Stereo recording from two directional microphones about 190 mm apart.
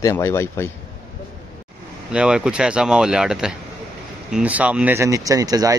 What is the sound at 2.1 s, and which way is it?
Speech, 5° right (ahead or behind).